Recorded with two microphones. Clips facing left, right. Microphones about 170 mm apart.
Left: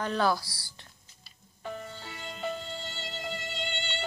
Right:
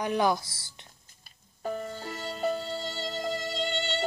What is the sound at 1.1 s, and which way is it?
Music, 45° right (ahead or behind).